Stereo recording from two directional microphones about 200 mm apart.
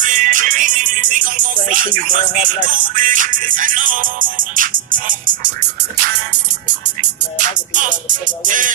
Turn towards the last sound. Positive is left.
turn(degrees=-40)  # may be behind; listen again after turning